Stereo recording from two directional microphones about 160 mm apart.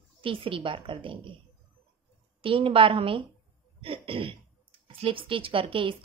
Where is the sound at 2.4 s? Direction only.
35° right (ahead or behind).